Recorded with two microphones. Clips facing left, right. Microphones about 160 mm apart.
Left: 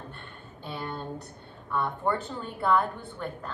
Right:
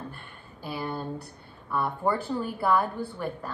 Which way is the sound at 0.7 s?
5° right (ahead or behind).